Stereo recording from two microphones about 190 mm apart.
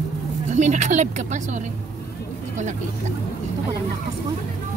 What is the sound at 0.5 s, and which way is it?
Speech, 40° right (ahead or behind).